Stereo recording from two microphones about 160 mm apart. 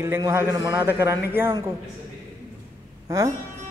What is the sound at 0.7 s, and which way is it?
Speech, 10° right (ahead or behind).